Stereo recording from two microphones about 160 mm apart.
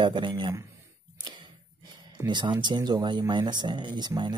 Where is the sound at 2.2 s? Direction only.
30° right (ahead or behind).